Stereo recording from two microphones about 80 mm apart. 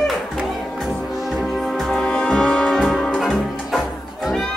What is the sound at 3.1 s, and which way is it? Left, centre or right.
Music, centre.